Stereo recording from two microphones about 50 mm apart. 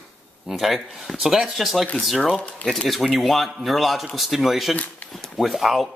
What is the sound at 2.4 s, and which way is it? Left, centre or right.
Speech, left.